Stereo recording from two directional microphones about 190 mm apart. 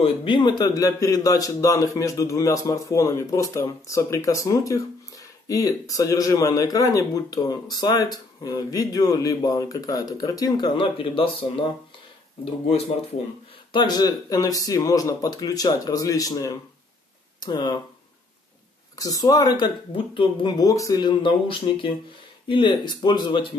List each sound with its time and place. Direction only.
0.0 s a man's voice: 25° left (ahead or behind)
13.7 s speech: 20° left (ahead or behind)
18.9 s speech: 20° left (ahead or behind)